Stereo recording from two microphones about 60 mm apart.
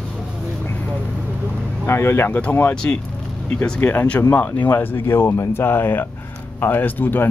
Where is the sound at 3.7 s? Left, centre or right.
Left.